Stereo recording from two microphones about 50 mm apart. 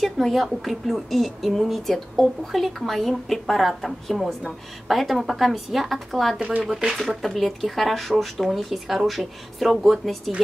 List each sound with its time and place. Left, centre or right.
0.0 s speech: centre
6.7 s speech: centre
7.0 s speech: centre